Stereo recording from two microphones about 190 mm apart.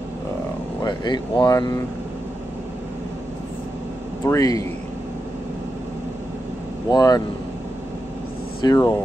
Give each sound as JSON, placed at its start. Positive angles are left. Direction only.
{"t": 0.8, "sound": "speech", "side_deg": 25}
{"t": 4.3, "sound": "speech", "side_deg": 20}
{"t": 6.9, "sound": "speech", "side_deg": 20}
{"t": 8.6, "sound": "speech", "side_deg": 20}